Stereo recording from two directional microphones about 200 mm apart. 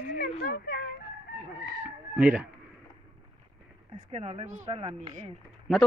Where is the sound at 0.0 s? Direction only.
45° left (ahead or behind).